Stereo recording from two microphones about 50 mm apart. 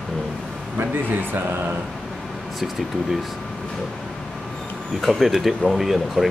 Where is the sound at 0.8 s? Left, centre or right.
Right.